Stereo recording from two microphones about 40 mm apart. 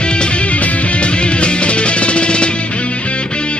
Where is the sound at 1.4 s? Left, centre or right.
Left.